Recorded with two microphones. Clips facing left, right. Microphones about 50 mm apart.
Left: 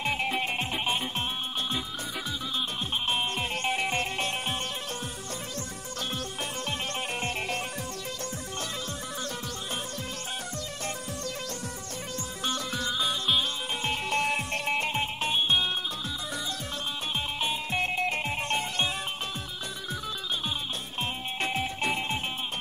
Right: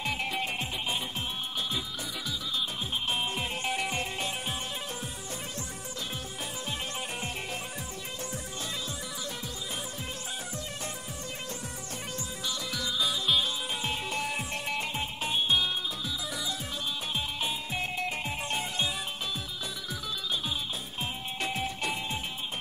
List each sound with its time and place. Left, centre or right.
0.0 s music: left
3.1 s music: centre
3.6 s music: left
3.9 s music: left
7.2 s music: left
12.4 s music: left
13.0 s music: centre
14.0 s music: left
14.3 s music: left
15.3 s music: left
17.6 s music: left
21.4 s music: left